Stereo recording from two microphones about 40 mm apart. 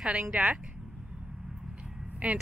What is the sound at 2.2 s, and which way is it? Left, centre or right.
Speech, right.